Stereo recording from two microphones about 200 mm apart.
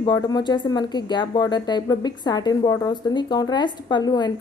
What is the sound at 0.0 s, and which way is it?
Speech, 20° left (ahead or behind).